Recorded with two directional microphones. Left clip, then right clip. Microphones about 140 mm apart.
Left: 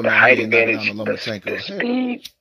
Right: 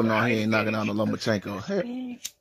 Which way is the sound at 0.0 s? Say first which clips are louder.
Left 11 dB; 35° left (ahead or behind).